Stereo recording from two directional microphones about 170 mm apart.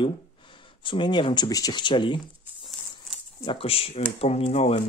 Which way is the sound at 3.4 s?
30° left (ahead or behind).